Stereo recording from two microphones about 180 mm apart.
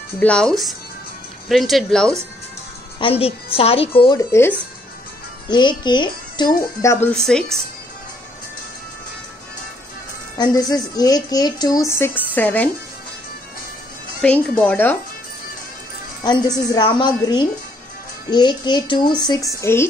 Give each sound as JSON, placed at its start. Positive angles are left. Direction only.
{"t": 0.2, "sound": "speech", "side_deg": 5}
{"t": 3.0, "sound": "a woman's voice", "side_deg": 30}
{"t": 4.2, "sound": "speech", "side_deg": 15}
{"t": 5.5, "sound": "speech", "side_deg": 25}
{"t": 10.3, "sound": "speech", "side_deg": 20}
{"t": 14.2, "sound": "speech", "side_deg": 10}
{"t": 16.3, "sound": "speech", "side_deg": 20}